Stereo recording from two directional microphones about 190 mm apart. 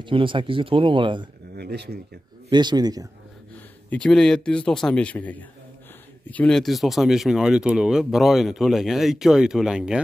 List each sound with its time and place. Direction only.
0.0 s speech: 25° right (ahead or behind)
1.5 s a sound: 60° right (ahead or behind)
2.5 s speech: 20° right (ahead or behind)
3.9 s speech: 5° left (ahead or behind)